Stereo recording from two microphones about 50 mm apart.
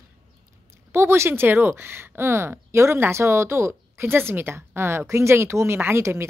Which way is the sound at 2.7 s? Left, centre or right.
Right.